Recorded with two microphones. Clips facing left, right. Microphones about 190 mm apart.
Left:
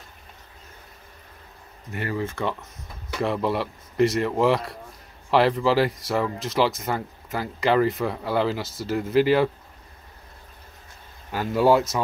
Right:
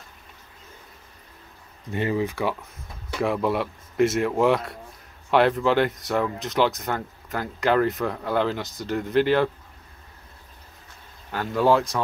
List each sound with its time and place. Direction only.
1.9 s speech: 20° right (ahead or behind)
3.2 s speech: centre (ahead or behind)
11.3 s speech: 10° left (ahead or behind)